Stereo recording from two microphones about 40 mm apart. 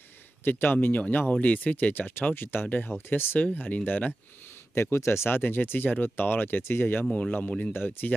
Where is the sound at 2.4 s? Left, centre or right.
Left.